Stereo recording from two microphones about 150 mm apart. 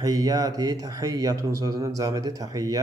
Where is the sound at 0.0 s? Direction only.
25° right (ahead or behind).